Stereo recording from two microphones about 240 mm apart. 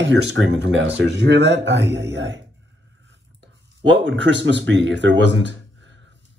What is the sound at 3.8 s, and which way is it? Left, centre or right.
Speech, right.